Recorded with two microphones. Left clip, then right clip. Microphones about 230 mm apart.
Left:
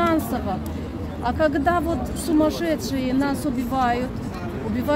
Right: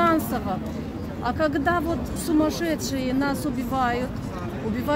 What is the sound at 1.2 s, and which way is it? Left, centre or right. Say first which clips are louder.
Speech: left 3 dB; centre.